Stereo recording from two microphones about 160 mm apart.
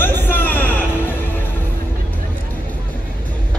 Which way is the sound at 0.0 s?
10° left (ahead or behind).